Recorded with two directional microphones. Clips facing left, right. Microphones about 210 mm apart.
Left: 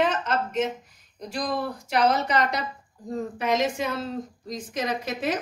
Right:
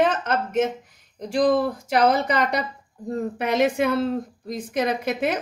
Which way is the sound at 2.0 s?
60° right (ahead or behind).